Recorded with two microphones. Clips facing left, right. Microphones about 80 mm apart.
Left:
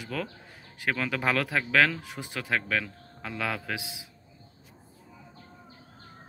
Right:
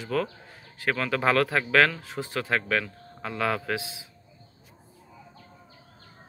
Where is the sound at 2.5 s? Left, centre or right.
Centre.